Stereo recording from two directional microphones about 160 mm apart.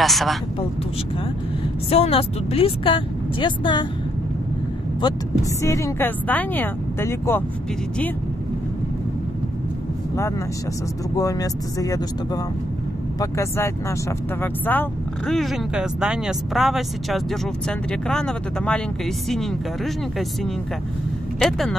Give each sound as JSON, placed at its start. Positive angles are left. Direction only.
{"t": 0.0, "sound": "a sound", "side_deg": 0}
{"t": 1.9, "sound": "speech", "side_deg": 35}
{"t": 5.0, "sound": "speech", "side_deg": 20}
{"t": 11.1, "sound": "speech", "side_deg": 20}
{"t": 21.4, "sound": "speech", "side_deg": 5}